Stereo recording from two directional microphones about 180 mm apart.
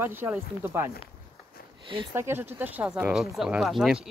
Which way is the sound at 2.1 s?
15° right (ahead or behind).